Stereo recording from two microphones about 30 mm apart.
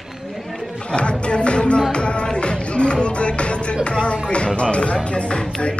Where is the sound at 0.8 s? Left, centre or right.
Left.